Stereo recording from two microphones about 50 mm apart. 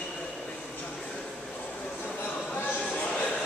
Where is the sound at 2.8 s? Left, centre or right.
Left.